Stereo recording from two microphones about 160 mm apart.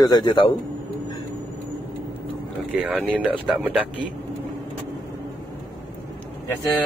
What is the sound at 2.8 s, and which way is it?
Speech, 5° right (ahead or behind).